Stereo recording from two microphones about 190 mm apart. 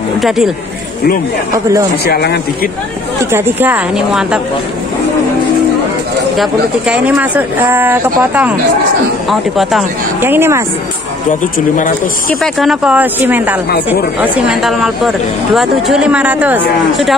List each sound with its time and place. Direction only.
2.0 s speech: 55° left (ahead or behind)
3.3 s speech: 10° right (ahead or behind)
6.3 s speech: 5° right (ahead or behind)
11.7 s speech: 45° left (ahead or behind)
12.5 s speech: 5° right (ahead or behind)